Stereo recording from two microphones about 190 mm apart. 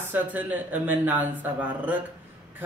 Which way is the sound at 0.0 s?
10° right (ahead or behind).